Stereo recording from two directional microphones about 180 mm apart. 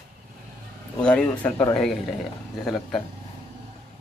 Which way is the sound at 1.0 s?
5° left (ahead or behind).